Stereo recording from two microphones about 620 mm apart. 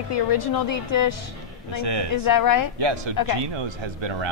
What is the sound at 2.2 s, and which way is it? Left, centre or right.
Speech, left.